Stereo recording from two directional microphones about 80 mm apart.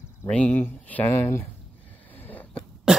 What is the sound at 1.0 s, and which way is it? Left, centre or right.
Speech, left.